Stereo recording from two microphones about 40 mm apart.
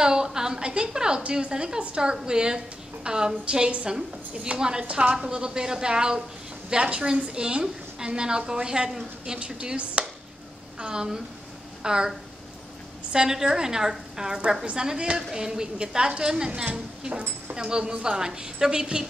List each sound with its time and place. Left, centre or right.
0.0 s a sound: centre
1.2 s a woman's voice: right
1.5 s a woman's voice: centre
4.8 s a woman's voice: right
13.1 s a woman's voice: centre